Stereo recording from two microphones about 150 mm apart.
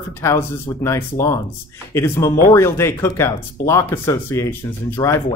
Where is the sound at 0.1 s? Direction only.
15° left (ahead or behind).